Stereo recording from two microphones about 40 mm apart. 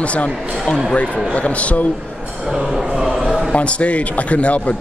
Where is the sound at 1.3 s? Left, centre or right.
Left.